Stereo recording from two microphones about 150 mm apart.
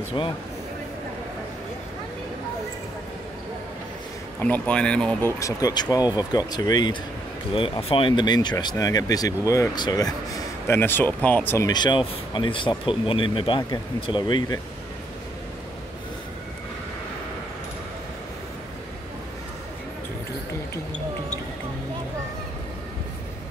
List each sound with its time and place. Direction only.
0.2 s speech: 30° left (ahead or behind)
4.4 s speech: 10° left (ahead or behind)
5.4 s speech: 25° left (ahead or behind)